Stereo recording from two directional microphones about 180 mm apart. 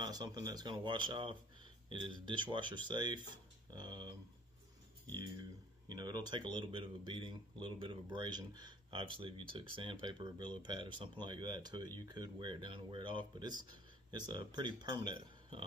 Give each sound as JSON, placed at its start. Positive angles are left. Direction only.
{"t": 0.0, "sound": "speech", "side_deg": -20}
{"t": 5.9, "sound": "speech", "side_deg": -25}